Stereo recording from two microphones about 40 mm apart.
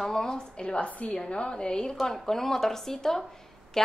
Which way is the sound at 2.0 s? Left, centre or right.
Centre.